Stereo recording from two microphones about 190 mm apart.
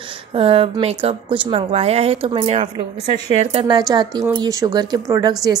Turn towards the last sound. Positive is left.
turn(degrees=-20)  # may be behind; listen again after turning